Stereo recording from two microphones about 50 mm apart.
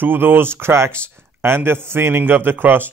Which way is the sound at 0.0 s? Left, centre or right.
Right.